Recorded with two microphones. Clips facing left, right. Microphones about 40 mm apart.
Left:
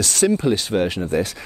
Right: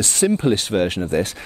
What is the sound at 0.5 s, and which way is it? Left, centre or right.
Speech, right.